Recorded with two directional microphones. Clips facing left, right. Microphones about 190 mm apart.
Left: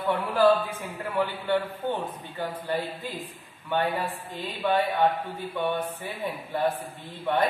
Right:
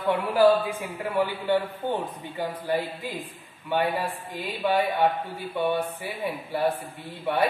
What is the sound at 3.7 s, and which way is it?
A man's voice, 10° right (ahead or behind).